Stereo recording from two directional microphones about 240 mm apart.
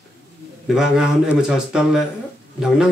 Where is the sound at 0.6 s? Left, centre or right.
Centre.